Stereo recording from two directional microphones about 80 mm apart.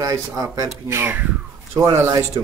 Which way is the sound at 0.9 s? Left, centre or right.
Right.